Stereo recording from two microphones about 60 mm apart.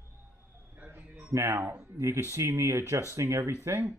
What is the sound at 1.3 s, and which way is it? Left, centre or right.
Speech, right.